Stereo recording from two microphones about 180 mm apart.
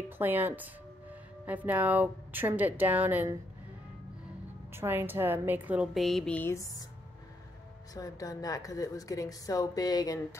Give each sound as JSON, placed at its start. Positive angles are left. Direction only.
{"t": 0.2, "sound": "a woman's voice", "side_deg": -10}
{"t": 4.7, "sound": "a woman's voice", "side_deg": -10}
{"t": 7.9, "sound": "a woman's voice", "side_deg": 20}